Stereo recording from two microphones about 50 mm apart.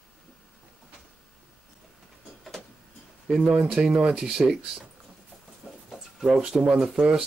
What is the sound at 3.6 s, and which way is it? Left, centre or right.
Speech, centre.